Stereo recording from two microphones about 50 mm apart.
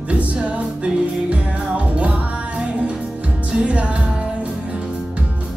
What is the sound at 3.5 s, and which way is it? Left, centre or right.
Music, right.